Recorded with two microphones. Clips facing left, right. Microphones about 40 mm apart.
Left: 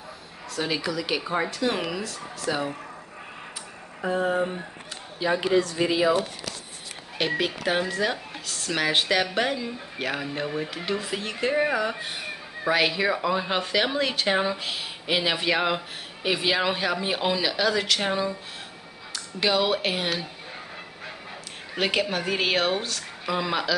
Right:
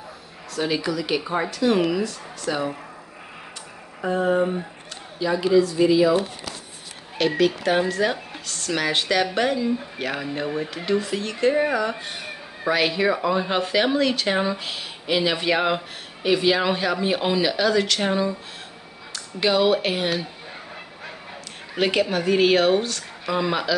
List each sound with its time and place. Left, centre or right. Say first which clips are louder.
0.6 s speech: right 3 dB; centre
4.0 s speech: right 4 dB; centre
5.3 s speech: right 4 dB; left
7.2 s speech: right 6 dB; centre
21.7 s speech: right 4 dB; centre